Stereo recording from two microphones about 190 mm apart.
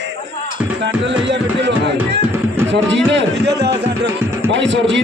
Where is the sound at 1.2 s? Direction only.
65° right (ahead or behind).